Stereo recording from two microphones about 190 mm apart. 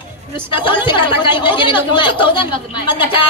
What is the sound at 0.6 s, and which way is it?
A woman's voice, 25° left (ahead or behind).